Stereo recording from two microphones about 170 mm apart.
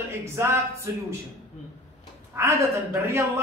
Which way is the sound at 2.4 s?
15° right (ahead or behind).